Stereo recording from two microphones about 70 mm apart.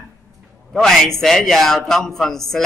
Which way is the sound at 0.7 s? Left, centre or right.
Centre.